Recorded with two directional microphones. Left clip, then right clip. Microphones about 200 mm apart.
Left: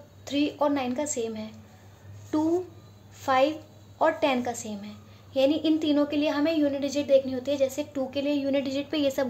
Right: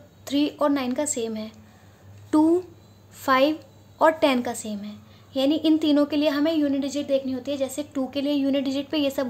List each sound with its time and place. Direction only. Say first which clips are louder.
0.2 s a woman's voice: right 3 dB; 15° right (ahead or behind)